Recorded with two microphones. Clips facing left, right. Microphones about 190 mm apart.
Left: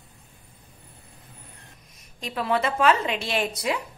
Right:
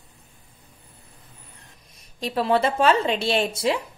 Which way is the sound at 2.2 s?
30° right (ahead or behind).